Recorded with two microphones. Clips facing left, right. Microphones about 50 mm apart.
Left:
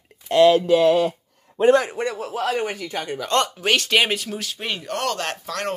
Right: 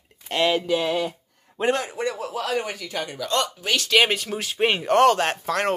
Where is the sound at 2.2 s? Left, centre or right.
Left.